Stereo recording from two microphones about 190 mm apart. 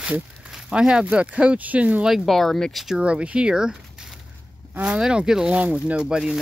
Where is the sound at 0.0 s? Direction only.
5° right (ahead or behind).